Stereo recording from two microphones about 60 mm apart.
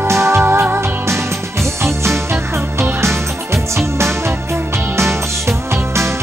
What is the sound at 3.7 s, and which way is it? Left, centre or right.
Music, right.